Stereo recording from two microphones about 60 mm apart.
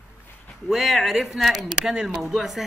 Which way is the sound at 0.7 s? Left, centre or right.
Centre.